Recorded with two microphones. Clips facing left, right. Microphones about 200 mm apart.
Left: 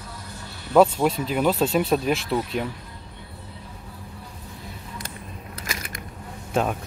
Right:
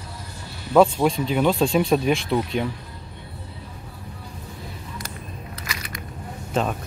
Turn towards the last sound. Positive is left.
turn(degrees=10)  # may be behind; listen again after turning